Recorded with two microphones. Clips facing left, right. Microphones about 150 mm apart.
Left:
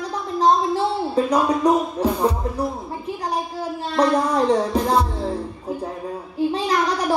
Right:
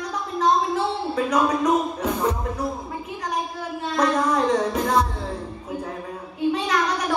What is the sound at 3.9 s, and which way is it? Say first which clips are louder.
Music: left 3 dB; 35° left (ahead or behind).